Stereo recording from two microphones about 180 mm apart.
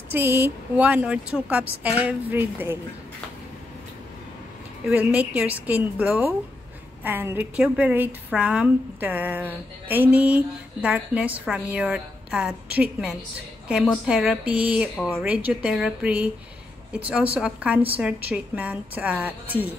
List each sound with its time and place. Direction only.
0.1 s a woman's voice: 15° right (ahead or behind)
4.8 s a woman's voice: 10° right (ahead or behind)